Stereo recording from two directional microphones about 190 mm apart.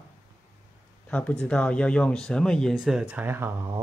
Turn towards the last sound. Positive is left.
turn(degrees=-10)  # may be behind; listen again after turning